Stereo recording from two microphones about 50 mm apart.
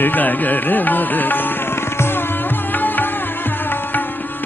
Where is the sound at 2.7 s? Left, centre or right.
Left.